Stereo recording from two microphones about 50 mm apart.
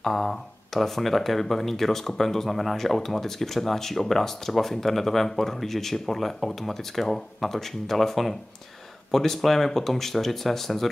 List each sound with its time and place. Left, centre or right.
0.0 s speech: centre